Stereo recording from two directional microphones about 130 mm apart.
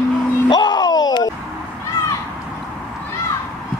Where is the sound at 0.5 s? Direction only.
30° left (ahead or behind).